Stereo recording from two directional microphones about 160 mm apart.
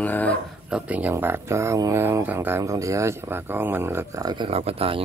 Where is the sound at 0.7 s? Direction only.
5° right (ahead or behind).